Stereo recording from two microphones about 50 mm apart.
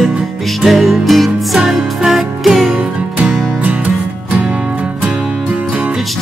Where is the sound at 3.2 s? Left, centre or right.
Right.